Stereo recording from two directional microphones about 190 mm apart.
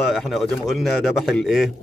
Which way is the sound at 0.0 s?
Centre (ahead or behind).